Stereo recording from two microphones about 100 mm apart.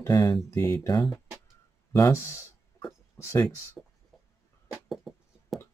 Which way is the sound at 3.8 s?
5° right (ahead or behind).